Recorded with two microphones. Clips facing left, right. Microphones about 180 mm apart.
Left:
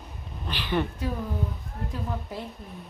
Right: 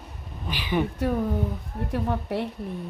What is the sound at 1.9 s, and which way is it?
Speech, 65° right (ahead or behind).